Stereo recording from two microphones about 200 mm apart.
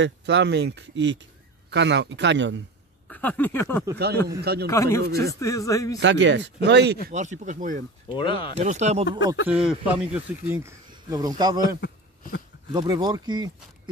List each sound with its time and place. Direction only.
0.0 s speech: 60° right (ahead or behind)
3.1 s a sound: 10° left (ahead or behind)
4.4 s a man's voice: 55° right (ahead or behind)
4.6 s a man's voice: 15° left (ahead or behind)
5.9 s speech: 60° right (ahead or behind)
7.1 s speech: 40° right (ahead or behind)
8.2 s speech: 25° left (ahead or behind)
8.5 s speech: 35° right (ahead or behind)
9.5 s speech: 5° right (ahead or behind); by 13.5 s 20° right (ahead or behind)